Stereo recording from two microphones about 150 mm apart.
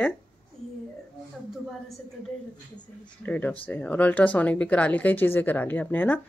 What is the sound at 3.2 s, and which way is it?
Speech, 10° left (ahead or behind).